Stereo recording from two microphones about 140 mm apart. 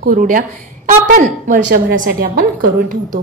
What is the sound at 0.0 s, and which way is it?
A woman's voice, 75° right (ahead or behind).